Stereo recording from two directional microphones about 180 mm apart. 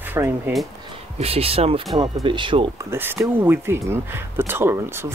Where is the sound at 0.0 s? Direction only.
10° right (ahead or behind).